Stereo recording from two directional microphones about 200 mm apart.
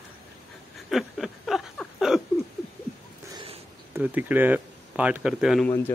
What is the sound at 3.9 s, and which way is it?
Speech, 10° right (ahead or behind).